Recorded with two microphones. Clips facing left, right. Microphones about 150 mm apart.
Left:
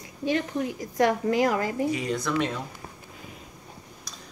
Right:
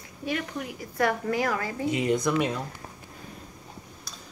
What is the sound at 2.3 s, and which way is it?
Speech, 10° right (ahead or behind).